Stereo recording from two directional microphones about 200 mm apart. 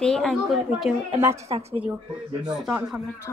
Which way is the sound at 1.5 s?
30° right (ahead or behind).